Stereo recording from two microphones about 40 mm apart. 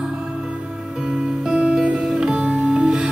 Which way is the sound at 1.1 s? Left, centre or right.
Right.